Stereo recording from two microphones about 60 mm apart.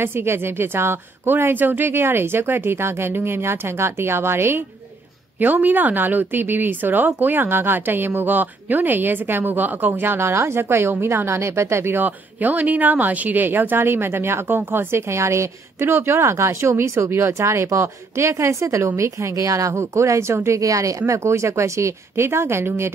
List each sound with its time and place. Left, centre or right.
0.0 s a woman's voice: right
5.4 s a woman's voice: right
12.0 s a woman's voice: right
20.4 s speech: right
21.1 s a woman's voice: right